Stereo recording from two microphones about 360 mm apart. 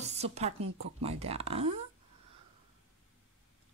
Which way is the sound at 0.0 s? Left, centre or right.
Centre.